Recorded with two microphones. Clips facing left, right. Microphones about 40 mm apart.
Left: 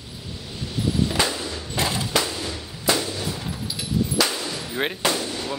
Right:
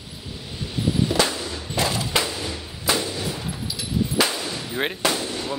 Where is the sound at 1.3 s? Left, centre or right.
Centre.